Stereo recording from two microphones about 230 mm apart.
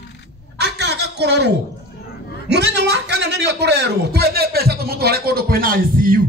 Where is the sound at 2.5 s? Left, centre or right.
Right.